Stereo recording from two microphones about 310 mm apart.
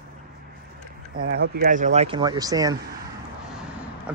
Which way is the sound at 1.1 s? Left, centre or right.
Right.